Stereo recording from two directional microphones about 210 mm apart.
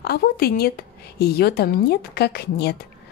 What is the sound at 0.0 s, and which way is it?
Speech, 50° left (ahead or behind).